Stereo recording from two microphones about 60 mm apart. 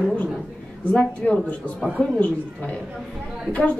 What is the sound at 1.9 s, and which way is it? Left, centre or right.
Speech, centre.